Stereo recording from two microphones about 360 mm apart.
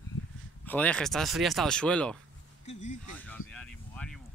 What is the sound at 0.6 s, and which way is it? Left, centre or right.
Speech, centre.